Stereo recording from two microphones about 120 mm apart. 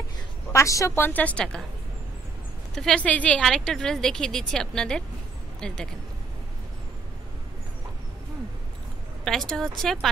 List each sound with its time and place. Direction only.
0.5 s a woman's voice: 25° left (ahead or behind); by 1.6 s 10° left (ahead or behind)
2.7 s a woman's voice: 5° left (ahead or behind)
9.2 s a woman's voice: 5° left (ahead or behind)